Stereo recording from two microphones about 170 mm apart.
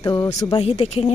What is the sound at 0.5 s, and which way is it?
Speech, 35° left (ahead or behind).